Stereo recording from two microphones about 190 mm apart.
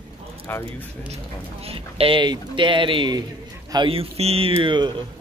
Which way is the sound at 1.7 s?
30° right (ahead or behind).